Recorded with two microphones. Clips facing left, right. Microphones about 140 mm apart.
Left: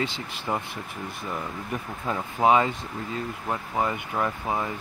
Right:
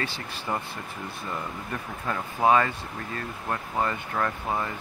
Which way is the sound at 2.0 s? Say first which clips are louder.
Left 1 dB; 15° left (ahead or behind).